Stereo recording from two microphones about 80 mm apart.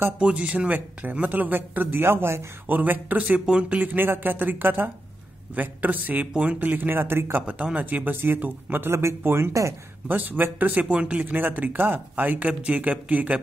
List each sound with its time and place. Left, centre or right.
0.2 s speech: centre
7.4 s speech: centre; by 9.8 s right
10.0 s speech: right